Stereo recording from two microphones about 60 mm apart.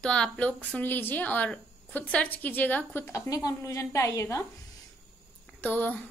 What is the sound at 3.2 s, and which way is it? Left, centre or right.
A woman's voice, left.